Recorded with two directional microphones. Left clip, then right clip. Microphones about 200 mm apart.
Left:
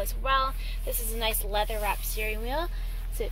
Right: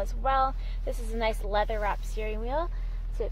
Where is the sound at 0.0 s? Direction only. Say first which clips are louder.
Even; 15° right (ahead or behind).